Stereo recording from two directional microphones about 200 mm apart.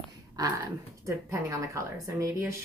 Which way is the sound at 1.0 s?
15° right (ahead or behind).